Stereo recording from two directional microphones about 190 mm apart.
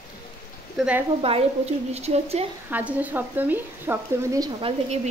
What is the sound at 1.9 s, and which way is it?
Speech, 35° right (ahead or behind).